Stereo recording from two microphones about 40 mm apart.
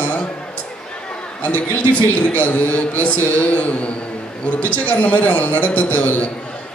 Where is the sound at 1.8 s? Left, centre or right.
Left.